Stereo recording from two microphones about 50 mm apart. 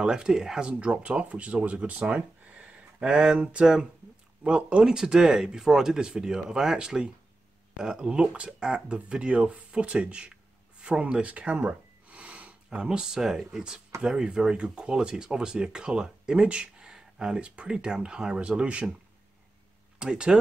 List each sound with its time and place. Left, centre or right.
0.0 s speech: centre
4.8 s speech: centre
11.0 s a sound: right
12.6 s speech: centre
20.0 s speech: centre